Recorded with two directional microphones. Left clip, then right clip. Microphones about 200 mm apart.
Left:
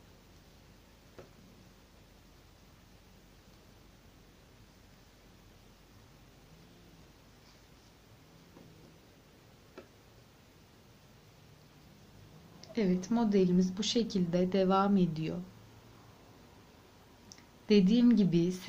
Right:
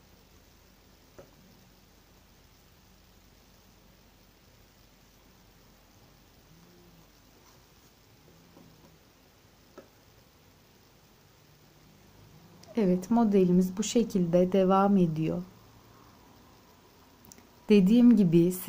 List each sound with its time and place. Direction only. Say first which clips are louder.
12.5 s speech: right 5 dB; 40° right (ahead or behind)
17.6 s speech: right 5 dB; 35° right (ahead or behind)